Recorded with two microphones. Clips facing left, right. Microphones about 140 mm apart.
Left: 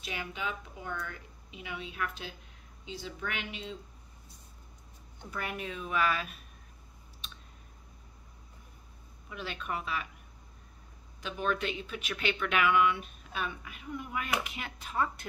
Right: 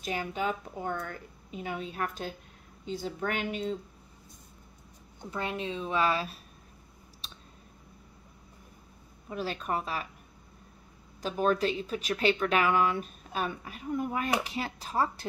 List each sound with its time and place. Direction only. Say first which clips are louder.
0.0 s a woman's voice: right 6 dB; 45° right (ahead or behind)
5.3 s speech: right 4 dB; 25° right (ahead or behind)
7.2 s clicking: even; 35° right (ahead or behind)
9.3 s speech: right 5 dB; 40° right (ahead or behind)
11.2 s speech: right 6 dB; 40° right (ahead or behind)